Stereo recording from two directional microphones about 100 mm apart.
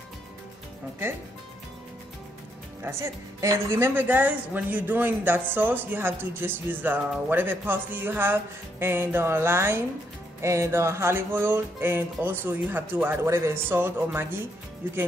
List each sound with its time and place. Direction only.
2.8 s a woman's voice: 25° right (ahead or behind)